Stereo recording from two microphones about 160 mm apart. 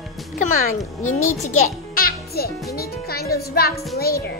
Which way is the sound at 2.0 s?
70° left (ahead or behind).